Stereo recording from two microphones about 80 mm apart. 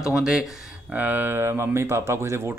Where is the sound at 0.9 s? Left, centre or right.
Right.